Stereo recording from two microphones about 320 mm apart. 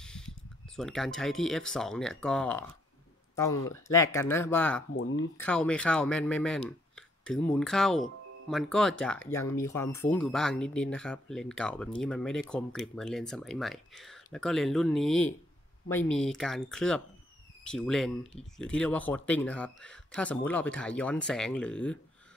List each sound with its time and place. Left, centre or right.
0.0 s a sound: centre
0.7 s speech: centre
3.6 s speech: centre
4.9 s speech: left
5.4 s speech: centre